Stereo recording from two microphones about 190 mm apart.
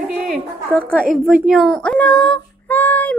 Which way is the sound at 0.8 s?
Centre (ahead or behind).